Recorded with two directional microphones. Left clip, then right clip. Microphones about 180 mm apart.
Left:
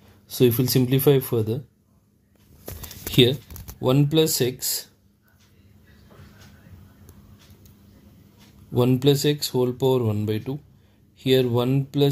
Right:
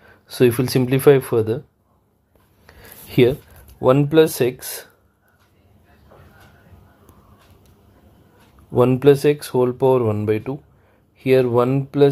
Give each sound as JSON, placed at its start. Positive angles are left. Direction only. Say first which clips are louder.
{"t": 0.3, "sound": "speech", "louder": "right 4 dB", "side_deg": -10}
{"t": 3.8, "sound": "speech", "louder": "right 7 dB", "side_deg": -15}
{"t": 8.7, "sound": "speech", "louder": "right 7 dB", "side_deg": -15}